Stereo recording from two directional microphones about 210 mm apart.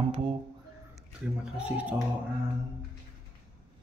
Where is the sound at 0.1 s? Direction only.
25° right (ahead or behind).